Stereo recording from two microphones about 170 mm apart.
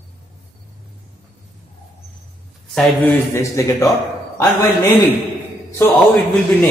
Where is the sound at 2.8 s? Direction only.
15° left (ahead or behind).